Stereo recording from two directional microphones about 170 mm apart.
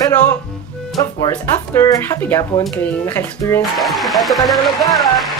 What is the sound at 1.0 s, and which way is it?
Speech, 20° left (ahead or behind).